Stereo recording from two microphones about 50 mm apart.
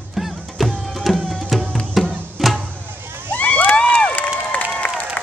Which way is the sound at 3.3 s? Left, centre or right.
Left.